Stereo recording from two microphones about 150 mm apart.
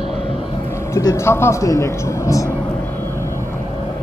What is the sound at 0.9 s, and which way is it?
Speech, 20° left (ahead or behind).